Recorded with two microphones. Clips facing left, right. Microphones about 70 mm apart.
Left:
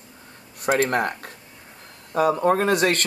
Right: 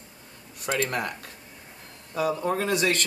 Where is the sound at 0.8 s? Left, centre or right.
Left.